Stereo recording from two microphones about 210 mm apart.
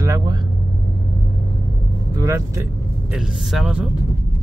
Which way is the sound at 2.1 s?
15° right (ahead or behind).